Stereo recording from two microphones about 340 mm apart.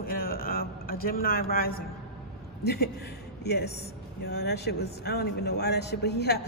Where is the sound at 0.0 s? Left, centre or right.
Left.